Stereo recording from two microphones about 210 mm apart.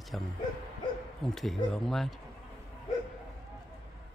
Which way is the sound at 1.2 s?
Centre (ahead or behind).